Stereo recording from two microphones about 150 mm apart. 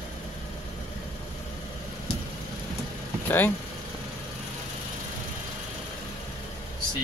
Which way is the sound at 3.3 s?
10° left (ahead or behind).